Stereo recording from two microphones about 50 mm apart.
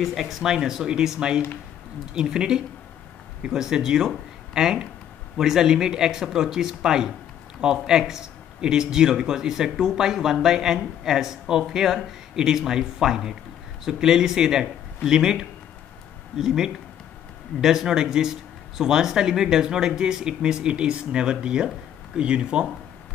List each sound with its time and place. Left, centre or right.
0.0 s speech: centre